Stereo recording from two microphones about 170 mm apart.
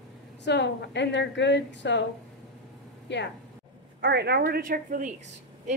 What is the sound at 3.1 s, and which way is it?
Speech, 90° left.